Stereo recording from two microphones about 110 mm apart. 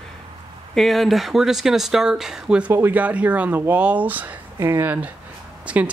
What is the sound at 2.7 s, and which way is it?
Speech, 20° right (ahead or behind).